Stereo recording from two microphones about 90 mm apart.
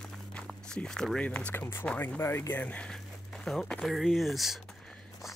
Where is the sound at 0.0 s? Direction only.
5° left (ahead or behind).